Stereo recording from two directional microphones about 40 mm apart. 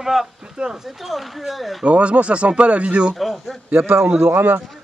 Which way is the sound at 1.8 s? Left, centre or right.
Right.